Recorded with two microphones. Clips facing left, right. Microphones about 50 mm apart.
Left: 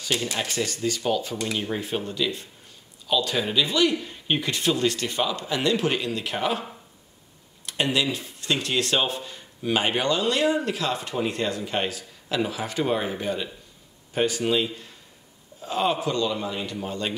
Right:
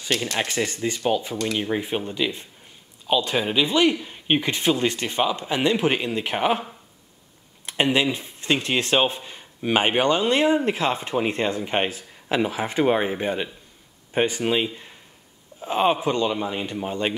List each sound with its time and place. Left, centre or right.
0.4 s speech: right
7.6 s speech: right